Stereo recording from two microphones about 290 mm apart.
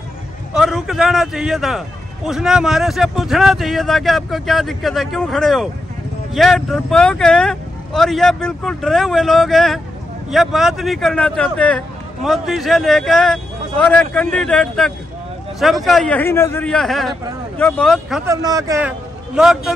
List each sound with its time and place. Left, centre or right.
0.6 s speech: centre
18.3 s a man's voice: centre